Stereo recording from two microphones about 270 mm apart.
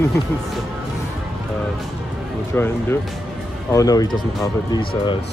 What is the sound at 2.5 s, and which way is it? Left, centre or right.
Speech, centre.